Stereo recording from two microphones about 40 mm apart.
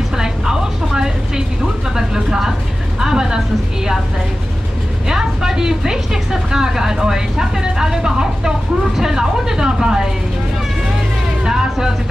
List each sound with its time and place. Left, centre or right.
0.2 s a sound: centre
2.0 s speech: centre
5.0 s a woman's voice: centre
11.4 s music: centre